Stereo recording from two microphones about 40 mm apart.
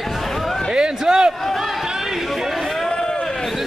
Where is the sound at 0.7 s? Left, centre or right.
Centre.